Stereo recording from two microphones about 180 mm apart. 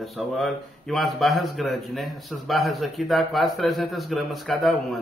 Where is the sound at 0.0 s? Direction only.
Centre (ahead or behind).